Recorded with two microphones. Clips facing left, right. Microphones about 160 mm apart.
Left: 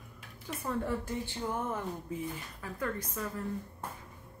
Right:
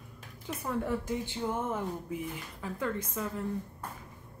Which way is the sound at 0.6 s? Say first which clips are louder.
Right 1 dB; 10° right (ahead or behind).